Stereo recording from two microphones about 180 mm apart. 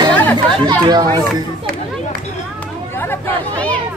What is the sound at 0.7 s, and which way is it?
Speech, 25° right (ahead or behind).